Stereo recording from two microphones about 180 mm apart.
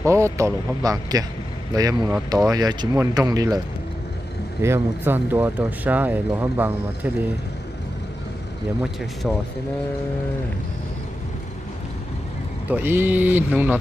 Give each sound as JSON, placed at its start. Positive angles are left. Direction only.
{"t": 0.0, "sound": "speech", "side_deg": -15}
{"t": 12.6, "sound": "speech", "side_deg": -10}